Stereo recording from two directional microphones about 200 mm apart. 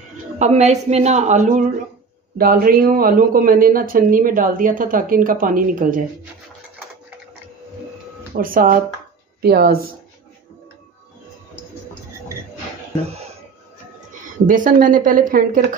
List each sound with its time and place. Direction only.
0.4 s a woman's voice: 35° right (ahead or behind)
8.4 s a man's voice: 45° right (ahead or behind)
14.5 s a man's voice: 40° right (ahead or behind)